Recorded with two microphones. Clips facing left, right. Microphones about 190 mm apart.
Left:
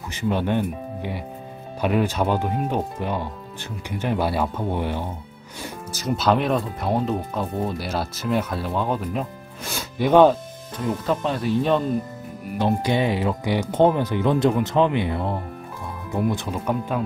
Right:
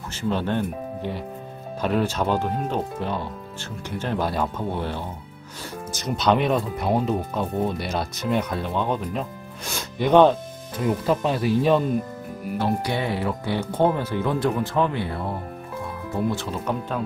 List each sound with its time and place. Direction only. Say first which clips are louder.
0.1 s speech: left 2 dB; 15° left (ahead or behind)
11.1 s speech: even; 5° right (ahead or behind)
12.5 s speech: left 4 dB; 20° left (ahead or behind)